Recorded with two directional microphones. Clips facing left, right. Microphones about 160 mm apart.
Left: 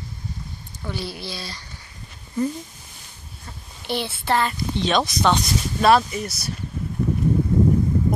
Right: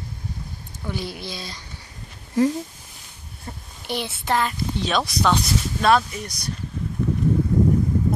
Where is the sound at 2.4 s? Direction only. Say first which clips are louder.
Right 5 dB; 90° right.